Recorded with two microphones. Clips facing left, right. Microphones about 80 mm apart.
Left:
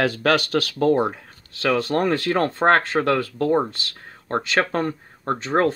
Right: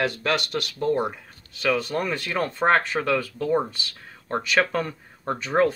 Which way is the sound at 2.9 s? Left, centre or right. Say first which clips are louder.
Left 4 dB; left.